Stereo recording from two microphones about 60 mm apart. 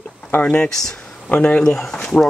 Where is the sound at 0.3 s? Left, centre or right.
Left.